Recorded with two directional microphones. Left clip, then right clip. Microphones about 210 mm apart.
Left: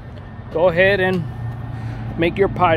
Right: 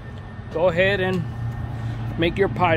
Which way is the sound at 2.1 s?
10° left (ahead or behind).